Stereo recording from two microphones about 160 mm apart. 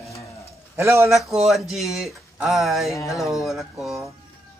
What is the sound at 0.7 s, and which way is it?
Speech, 15° right (ahead or behind).